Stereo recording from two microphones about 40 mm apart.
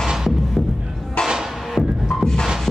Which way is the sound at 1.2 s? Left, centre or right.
Left.